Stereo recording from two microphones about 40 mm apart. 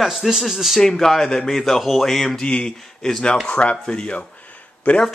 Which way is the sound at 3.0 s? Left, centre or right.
Centre.